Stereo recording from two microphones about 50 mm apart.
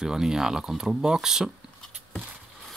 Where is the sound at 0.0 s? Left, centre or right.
Centre.